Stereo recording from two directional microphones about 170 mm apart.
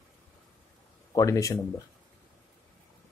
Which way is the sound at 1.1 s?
20° left (ahead or behind).